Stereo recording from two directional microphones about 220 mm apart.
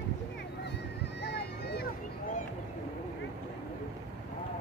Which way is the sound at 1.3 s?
45° left (ahead or behind).